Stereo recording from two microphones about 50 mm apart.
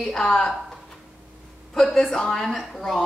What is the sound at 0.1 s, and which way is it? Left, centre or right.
Speech, centre.